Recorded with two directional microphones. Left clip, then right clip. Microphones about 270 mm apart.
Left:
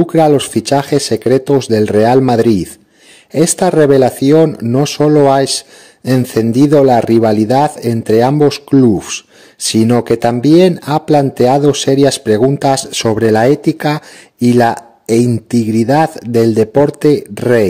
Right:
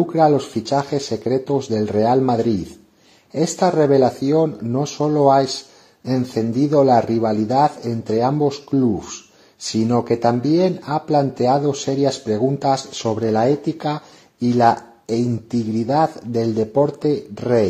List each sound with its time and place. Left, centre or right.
0.0 s speech: left